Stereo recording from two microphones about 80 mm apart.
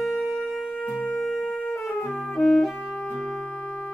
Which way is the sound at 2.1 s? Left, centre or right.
Centre.